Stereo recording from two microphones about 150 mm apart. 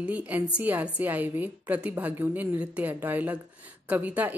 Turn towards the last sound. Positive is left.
turn(degrees=-10)  # may be behind; listen again after turning